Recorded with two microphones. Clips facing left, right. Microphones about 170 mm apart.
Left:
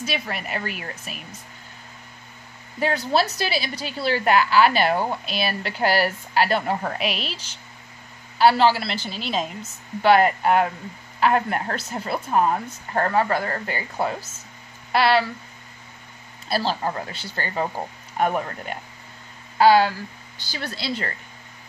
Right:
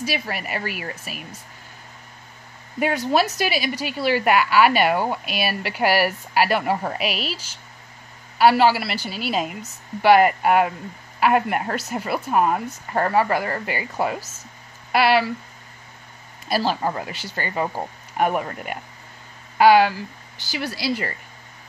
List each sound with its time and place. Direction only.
0.0 s a woman's voice: 5° right (ahead or behind)
3.3 s a woman's voice: 10° right (ahead or behind)
16.4 s a woman's voice: 15° right (ahead or behind)